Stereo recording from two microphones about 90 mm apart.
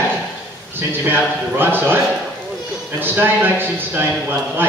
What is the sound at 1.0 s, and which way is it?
Speech, 20° right (ahead or behind).